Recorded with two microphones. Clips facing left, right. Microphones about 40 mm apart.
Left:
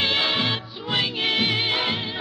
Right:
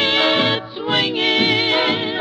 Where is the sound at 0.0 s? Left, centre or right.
Right.